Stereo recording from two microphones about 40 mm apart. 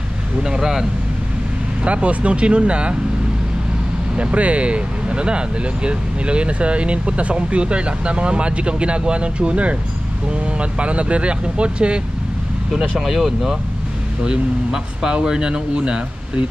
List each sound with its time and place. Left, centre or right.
0.4 s speech: centre
1.9 s speech: right
4.2 s speech: right
12.7 s speech: centre
14.2 s speech: right